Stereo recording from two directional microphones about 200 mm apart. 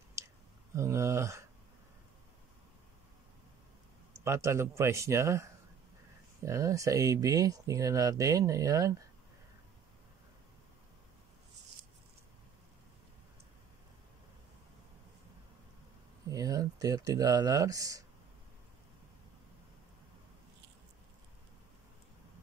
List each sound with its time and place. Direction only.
0.2 s clicking: 15° right (ahead or behind)
0.7 s speech: 15° right (ahead or behind)
4.2 s speech: 15° right (ahead or behind)
16.3 s speech: 15° right (ahead or behind)